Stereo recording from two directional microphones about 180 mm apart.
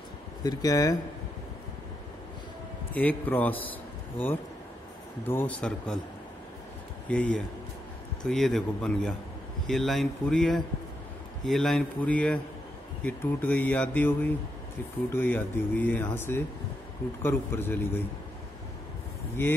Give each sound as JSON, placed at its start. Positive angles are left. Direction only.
{"t": 0.4, "sound": "speech", "side_deg": 20}
{"t": 2.9, "sound": "speech", "side_deg": 10}
{"t": 5.2, "sound": "speech", "side_deg": 10}
{"t": 7.1, "sound": "speech", "side_deg": 5}